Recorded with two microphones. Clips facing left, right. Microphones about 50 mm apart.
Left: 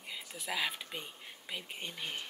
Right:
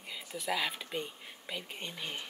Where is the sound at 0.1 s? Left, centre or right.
Centre.